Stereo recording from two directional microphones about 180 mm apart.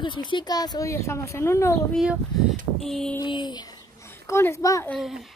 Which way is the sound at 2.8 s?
Centre (ahead or behind).